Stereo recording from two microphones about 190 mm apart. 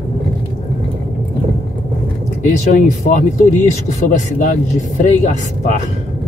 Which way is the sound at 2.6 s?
40° left (ahead or behind).